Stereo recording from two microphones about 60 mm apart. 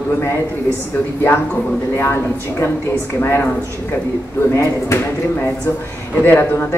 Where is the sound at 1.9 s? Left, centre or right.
Left.